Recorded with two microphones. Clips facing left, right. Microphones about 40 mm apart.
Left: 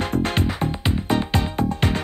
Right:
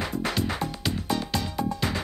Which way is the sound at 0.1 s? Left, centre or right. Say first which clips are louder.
Left 5 dB; left.